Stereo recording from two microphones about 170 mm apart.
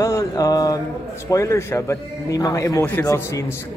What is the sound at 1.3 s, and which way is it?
Speech, 20° left (ahead or behind).